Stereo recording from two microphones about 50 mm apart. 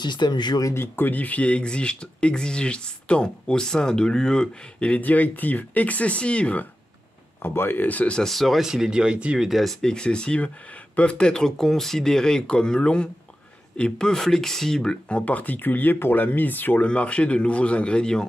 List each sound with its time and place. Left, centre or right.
0.7 s speech: left
5.0 s speech: left
7.4 s speech: left
8.3 s speech: centre; by 9.4 s right
9.4 s speech: centre; by 16.8 s left
16.8 s speech: left